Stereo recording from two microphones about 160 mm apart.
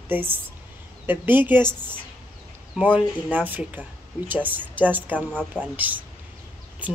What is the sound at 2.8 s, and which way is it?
Speech, 10° right (ahead or behind).